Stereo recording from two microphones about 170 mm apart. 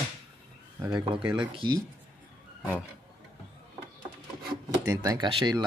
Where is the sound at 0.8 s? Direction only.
5° right (ahead or behind).